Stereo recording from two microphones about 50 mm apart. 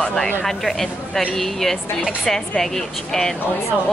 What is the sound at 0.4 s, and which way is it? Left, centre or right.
A woman's voice, centre.